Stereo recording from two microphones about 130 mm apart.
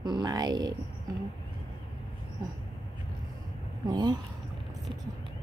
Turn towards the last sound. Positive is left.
turn(degrees=-30)  # may be behind; listen again after turning